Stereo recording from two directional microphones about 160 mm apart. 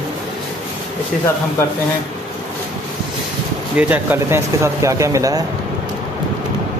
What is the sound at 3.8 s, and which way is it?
Speech, 10° right (ahead or behind).